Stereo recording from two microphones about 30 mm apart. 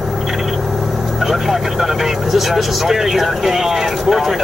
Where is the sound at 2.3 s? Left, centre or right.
Centre.